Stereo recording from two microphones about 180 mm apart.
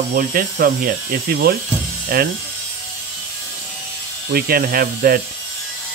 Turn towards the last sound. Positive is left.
turn(degrees=-55)  # may be behind; listen again after turning